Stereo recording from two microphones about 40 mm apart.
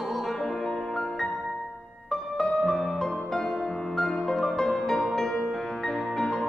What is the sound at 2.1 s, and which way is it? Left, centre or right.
Music, centre.